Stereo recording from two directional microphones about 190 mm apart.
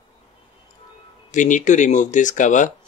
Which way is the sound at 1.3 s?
40° left (ahead or behind).